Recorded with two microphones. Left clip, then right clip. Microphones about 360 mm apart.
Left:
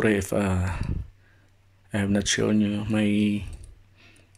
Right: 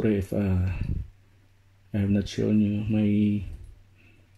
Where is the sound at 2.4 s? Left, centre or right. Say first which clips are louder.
Left 2 dB; left.